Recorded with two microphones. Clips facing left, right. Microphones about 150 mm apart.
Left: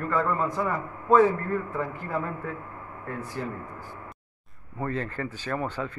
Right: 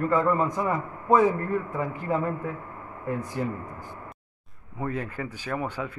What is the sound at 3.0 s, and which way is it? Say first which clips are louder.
Speech: right 4 dB; 15° right (ahead or behind).